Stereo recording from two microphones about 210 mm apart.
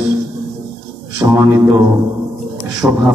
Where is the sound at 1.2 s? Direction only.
15° right (ahead or behind).